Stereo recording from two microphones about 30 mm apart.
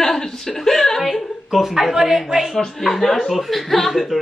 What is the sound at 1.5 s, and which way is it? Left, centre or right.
Speech, centre.